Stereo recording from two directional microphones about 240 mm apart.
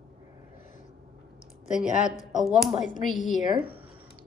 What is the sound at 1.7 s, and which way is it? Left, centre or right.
Speech, centre.